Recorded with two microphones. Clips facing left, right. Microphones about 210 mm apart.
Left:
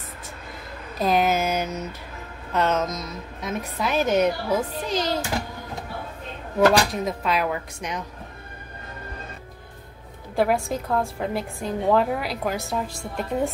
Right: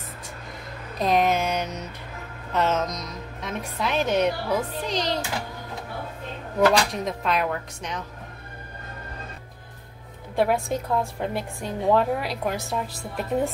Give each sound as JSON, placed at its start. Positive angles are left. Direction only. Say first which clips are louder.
{"t": 0.9, "sound": "a sound", "louder": "even", "side_deg": 5}
{"t": 2.5, "sound": "a woman's voice", "louder": "left 1 dB", "side_deg": 0}
{"t": 6.9, "sound": "a woman's voice", "louder": "left 1 dB", "side_deg": 0}
{"t": 10.3, "sound": "a woman's voice", "louder": "left 1 dB", "side_deg": 0}